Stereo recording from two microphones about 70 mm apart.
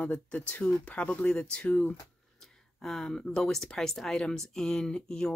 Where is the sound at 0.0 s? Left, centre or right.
Centre.